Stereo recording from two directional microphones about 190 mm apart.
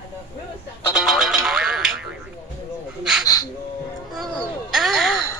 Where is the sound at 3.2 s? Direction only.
20° left (ahead or behind).